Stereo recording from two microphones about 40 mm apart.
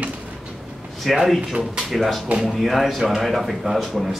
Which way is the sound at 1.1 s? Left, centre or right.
Centre.